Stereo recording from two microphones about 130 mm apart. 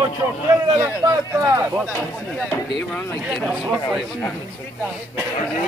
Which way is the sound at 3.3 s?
5° left (ahead or behind).